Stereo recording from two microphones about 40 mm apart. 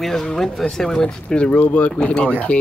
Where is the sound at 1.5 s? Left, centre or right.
Left.